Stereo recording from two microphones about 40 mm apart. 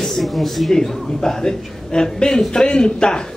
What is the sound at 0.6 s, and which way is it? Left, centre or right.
A woman's voice, centre.